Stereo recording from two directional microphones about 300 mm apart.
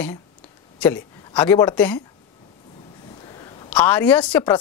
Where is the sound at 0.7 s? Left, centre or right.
Centre.